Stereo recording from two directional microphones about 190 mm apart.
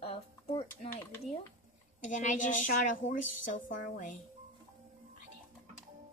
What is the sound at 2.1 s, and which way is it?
A woman's voice, 40° left (ahead or behind).